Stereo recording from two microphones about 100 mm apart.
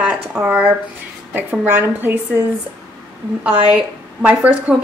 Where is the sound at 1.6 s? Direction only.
20° right (ahead or behind).